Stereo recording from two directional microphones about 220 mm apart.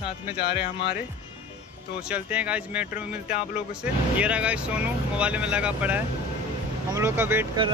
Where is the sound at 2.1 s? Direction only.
5° right (ahead or behind).